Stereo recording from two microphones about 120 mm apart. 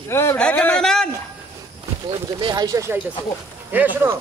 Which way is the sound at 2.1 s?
40° right (ahead or behind).